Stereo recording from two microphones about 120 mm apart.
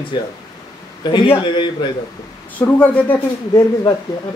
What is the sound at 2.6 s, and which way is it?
Speech, 15° left (ahead or behind).